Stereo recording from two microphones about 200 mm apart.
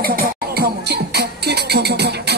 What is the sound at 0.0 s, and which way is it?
Music, 50° right (ahead or behind).